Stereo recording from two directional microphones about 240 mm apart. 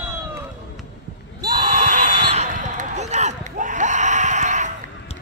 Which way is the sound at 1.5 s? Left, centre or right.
Right.